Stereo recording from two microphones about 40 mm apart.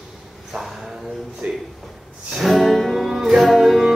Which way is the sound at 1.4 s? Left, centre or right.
Right.